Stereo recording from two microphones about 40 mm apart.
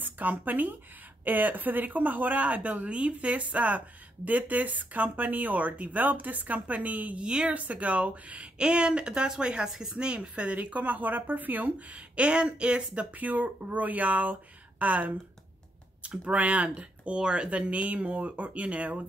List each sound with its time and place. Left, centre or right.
0.0 s speech: right
7.2 s speech: right
7.4 s speech: right
8.5 s speech: right
12.2 s speech: right
13.1 s speech: right
16.3 s speech: right
17.5 s speech: right